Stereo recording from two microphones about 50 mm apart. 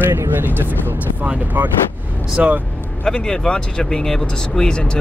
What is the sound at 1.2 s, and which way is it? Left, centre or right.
Speech, right.